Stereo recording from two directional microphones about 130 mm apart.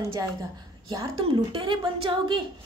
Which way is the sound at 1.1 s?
45° right (ahead or behind).